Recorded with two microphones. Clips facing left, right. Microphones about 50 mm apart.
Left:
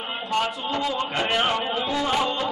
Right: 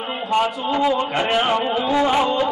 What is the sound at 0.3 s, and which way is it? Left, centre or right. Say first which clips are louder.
A man's voice: right 6 dB; centre.